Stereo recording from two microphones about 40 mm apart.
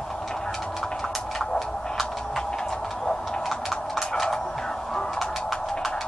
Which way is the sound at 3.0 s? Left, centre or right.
Centre.